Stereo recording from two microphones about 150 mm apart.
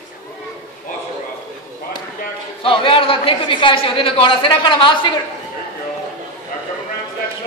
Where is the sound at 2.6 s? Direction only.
35° left (ahead or behind).